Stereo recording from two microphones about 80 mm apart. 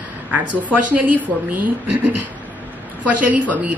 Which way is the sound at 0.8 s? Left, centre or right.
Centre.